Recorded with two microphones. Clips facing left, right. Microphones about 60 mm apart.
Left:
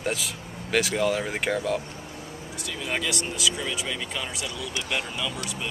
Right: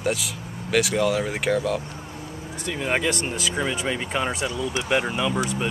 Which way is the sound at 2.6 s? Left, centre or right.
Right.